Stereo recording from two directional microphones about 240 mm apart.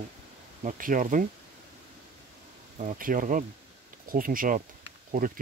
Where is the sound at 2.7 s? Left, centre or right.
Right.